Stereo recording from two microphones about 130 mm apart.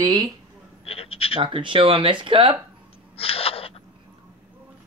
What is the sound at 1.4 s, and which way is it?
Speech, 40° right (ahead or behind).